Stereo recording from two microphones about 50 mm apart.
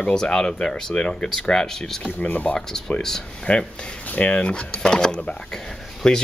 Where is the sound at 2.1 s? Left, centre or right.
Left.